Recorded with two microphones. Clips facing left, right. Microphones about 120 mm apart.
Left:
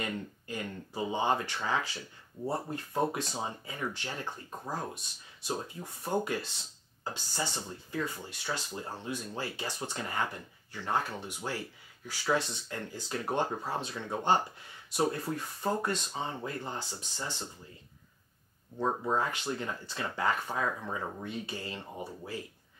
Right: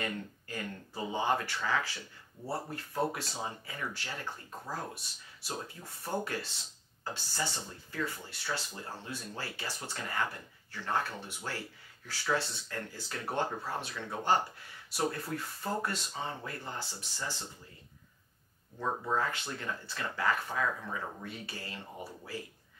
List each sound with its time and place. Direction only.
0.0 s speech: 20° left (ahead or behind)
18.8 s speech: 20° left (ahead or behind)